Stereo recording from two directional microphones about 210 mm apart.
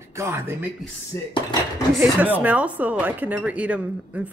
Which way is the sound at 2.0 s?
10° right (ahead or behind).